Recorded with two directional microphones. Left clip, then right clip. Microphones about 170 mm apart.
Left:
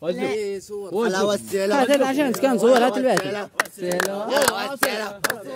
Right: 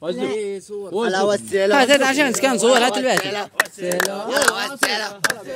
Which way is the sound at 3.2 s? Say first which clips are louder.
Right 3 dB; 75° left (ahead or behind).